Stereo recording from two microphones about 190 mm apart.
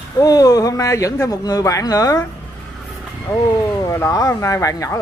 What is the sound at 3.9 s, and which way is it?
Speech, 15° left (ahead or behind).